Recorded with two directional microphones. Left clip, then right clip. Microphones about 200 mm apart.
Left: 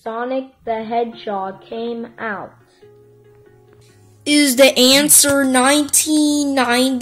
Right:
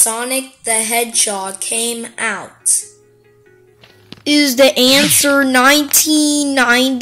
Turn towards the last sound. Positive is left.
turn(degrees=0)  # may be behind; listen again after turning